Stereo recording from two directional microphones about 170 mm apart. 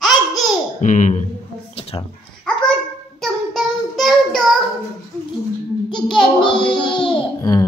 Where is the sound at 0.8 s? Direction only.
45° left (ahead or behind).